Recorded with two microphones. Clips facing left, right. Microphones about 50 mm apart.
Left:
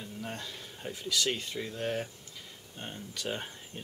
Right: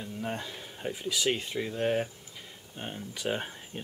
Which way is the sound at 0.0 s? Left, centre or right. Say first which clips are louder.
Right 5 dB; centre.